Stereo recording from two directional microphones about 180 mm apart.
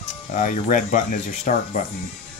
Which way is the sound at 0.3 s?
45° left (ahead or behind).